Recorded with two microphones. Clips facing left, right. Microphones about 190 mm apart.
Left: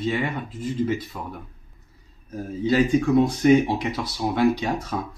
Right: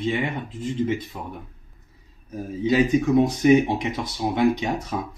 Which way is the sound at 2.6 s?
20° right (ahead or behind).